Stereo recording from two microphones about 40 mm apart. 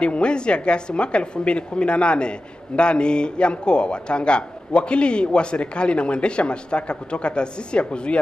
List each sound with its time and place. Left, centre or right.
0.0 s a woman's voice: left